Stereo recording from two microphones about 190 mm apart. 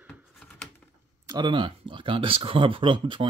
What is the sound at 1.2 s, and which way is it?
Speech, 20° right (ahead or behind).